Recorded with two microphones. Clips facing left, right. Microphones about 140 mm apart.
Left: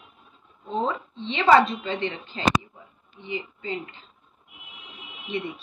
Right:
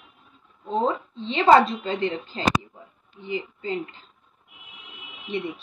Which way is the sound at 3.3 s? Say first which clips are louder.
Right 3 dB; 40° right (ahead or behind).